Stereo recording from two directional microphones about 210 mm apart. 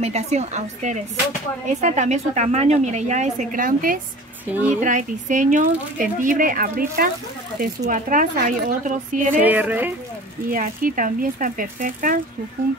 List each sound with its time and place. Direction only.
0.0 s speech: 30° right (ahead or behind)
9.4 s speech: 10° right (ahead or behind)
10.5 s speech: 40° right (ahead or behind)